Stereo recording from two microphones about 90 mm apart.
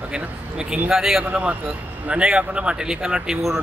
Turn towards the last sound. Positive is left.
turn(degrees=-5)  # may be behind; listen again after turning